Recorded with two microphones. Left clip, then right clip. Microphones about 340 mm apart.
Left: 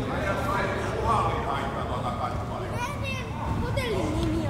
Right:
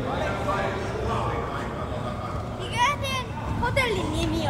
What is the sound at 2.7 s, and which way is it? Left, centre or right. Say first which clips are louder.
Children playing: right 13 dB; right.